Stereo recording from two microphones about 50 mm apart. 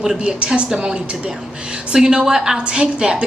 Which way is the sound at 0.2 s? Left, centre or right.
Right.